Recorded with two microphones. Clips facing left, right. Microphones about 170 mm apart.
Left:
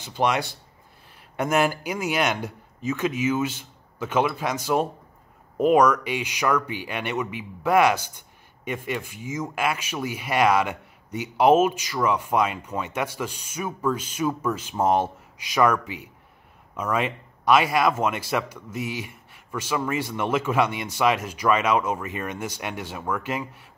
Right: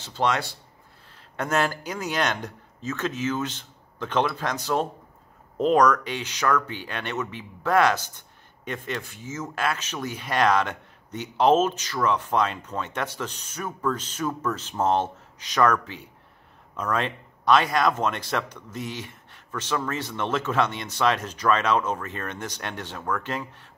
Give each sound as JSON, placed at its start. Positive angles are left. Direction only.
{"t": 0.0, "sound": "speech", "side_deg": 15}